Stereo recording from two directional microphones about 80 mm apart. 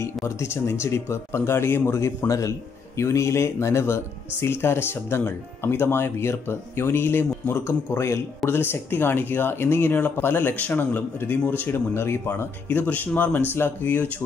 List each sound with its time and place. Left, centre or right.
0.4 s speech: left